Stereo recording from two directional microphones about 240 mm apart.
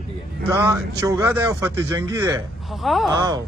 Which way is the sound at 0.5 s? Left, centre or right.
Centre.